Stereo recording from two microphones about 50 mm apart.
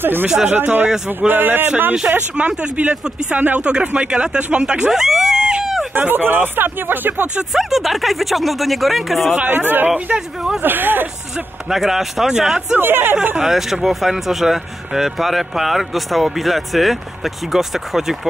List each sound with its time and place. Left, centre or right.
0.0 s speech: right
0.3 s speech: centre
1.2 s speech: right
2.3 s speech: right; by 5.5 s centre
5.9 s speech: right
7.5 s a man's voice: centre
9.5 s speech: right
10.1 s speech: centre
10.6 s speech: right
11.7 s speech: centre
12.7 s speech: right
13.4 s a man's voice: centre